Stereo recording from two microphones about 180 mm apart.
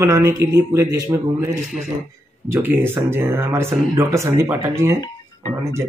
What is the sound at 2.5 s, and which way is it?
Speech, 10° right (ahead or behind).